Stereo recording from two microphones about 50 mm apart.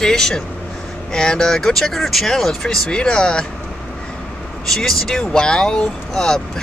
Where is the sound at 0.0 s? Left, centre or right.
Centre.